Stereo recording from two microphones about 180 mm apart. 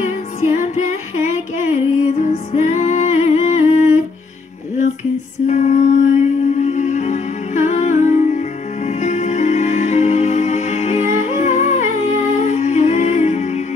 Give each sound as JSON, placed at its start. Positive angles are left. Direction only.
{"t": 0.0, "sound": "music", "side_deg": 40}
{"t": 5.5, "sound": "music", "side_deg": 40}